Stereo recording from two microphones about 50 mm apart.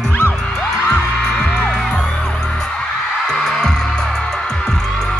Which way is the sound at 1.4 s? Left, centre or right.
Centre.